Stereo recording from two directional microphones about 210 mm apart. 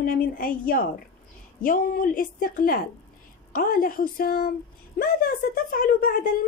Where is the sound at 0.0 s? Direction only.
40° left (ahead or behind).